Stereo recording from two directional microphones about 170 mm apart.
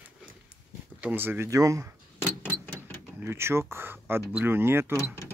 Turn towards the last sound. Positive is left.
turn(degrees=-15)  # may be behind; listen again after turning